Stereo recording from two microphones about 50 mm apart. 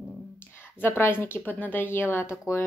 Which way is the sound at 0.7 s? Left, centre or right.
Left.